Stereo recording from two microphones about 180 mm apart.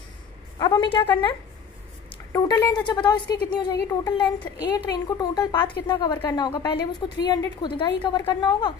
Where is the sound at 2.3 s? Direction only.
20° left (ahead or behind).